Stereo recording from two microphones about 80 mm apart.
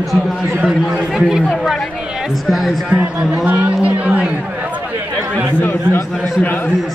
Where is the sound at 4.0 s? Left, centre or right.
Centre.